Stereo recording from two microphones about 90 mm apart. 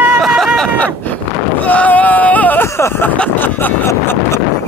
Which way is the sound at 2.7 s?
30° left (ahead or behind).